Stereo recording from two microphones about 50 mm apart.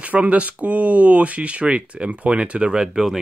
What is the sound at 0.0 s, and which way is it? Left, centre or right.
Speech, right.